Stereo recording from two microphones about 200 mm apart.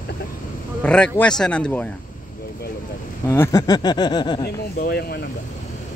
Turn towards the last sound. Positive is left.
turn(degrees=50)  # may be behind; listen again after turning